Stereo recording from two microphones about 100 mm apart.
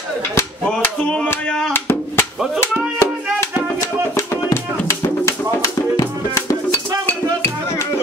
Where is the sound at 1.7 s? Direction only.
20° left (ahead or behind).